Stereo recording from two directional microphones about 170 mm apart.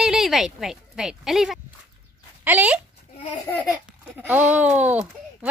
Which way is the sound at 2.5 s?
10° right (ahead or behind).